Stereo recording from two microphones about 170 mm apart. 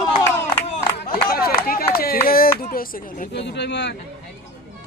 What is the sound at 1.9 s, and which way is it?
Clapping, 60° left (ahead or behind).